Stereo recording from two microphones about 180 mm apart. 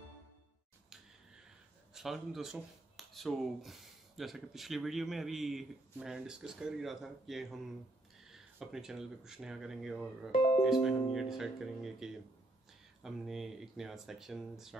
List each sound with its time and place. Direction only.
2.0 s speech: centre (ahead or behind)